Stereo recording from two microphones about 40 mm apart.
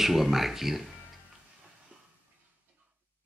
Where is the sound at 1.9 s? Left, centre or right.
Right.